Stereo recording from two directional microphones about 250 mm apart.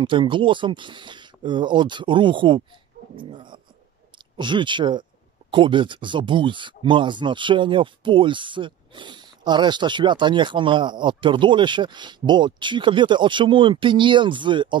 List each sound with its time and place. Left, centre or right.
0.0 s speech: centre